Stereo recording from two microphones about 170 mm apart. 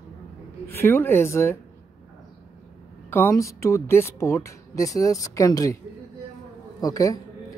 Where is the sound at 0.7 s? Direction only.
15° left (ahead or behind).